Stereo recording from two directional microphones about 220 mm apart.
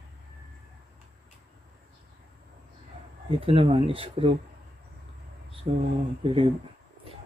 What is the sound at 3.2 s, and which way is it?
Speech, 25° right (ahead or behind).